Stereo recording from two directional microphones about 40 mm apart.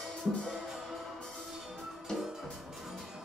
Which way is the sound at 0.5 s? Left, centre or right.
Centre.